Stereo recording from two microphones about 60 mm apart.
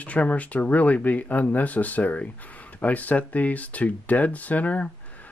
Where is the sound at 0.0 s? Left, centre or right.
Left.